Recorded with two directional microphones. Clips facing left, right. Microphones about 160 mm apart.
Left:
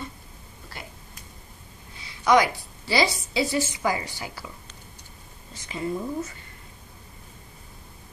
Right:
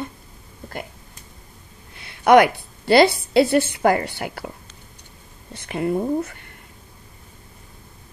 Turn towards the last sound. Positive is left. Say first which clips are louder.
# right 7 dB
turn(degrees=-60)  # may be behind; listen again after turning